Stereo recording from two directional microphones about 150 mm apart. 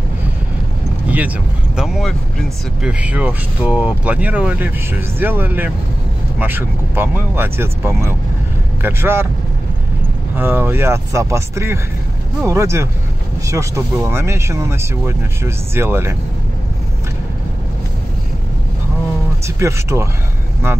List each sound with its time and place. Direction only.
1.0 s speech: 10° right (ahead or behind)
2.9 s speech: 10° right (ahead or behind)
10.3 s speech: 15° right (ahead or behind)
19.4 s speech: 20° right (ahead or behind)